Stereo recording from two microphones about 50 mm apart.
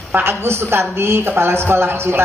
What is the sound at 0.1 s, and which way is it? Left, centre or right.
A man's voice, right.